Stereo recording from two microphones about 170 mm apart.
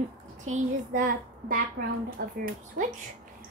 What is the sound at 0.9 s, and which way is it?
A woman's voice, 55° right (ahead or behind).